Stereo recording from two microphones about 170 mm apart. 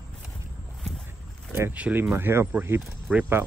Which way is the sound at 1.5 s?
10° right (ahead or behind).